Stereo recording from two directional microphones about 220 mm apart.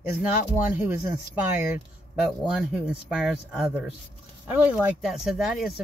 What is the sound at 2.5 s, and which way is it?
Speech, 5° right (ahead or behind).